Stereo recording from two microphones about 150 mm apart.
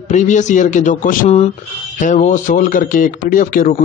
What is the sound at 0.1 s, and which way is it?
A man's voice, 55° left (ahead or behind).